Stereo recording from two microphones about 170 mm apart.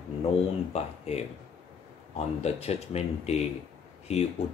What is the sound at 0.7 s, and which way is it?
Speech, 40° left (ahead or behind).